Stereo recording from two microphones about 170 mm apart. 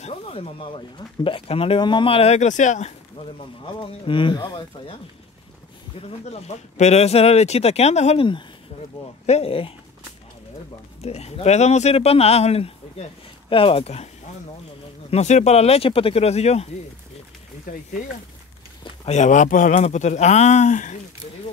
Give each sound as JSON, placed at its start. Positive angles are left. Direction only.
{"t": 0.0, "sound": "speech", "side_deg": 35}
{"t": 3.3, "sound": "speech", "side_deg": 30}
{"t": 5.9, "sound": "speech", "side_deg": 35}
{"t": 11.0, "sound": "speech", "side_deg": 40}
{"t": 15.0, "sound": "speech", "side_deg": 40}
{"t": 18.9, "sound": "speech", "side_deg": 40}